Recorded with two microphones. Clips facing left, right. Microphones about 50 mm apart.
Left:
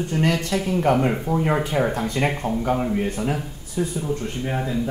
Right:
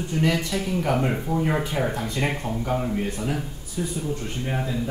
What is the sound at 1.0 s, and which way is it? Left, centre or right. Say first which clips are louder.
Speech: left 3 dB; centre.